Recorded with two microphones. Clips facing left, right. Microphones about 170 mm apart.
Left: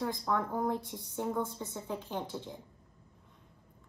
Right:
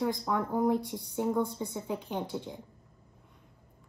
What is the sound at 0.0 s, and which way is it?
A woman's voice, 20° right (ahead or behind).